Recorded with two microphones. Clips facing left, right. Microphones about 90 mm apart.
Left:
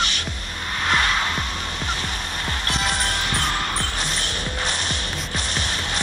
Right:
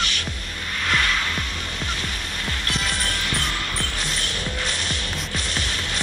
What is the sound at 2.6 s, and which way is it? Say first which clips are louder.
Music: left 3 dB; 30° left (ahead or behind).